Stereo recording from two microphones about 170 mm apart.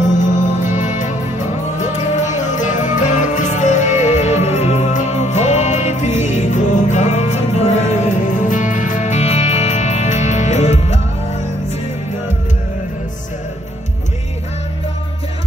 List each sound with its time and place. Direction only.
0.7 s music: 45° left (ahead or behind)